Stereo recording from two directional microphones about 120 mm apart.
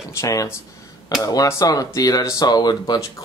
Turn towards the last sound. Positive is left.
turn(degrees=35)  # may be behind; listen again after turning